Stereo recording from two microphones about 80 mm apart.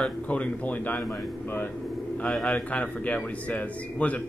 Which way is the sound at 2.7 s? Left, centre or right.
Centre.